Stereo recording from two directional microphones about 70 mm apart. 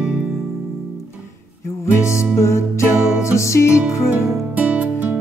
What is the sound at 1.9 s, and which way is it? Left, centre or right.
Music, left.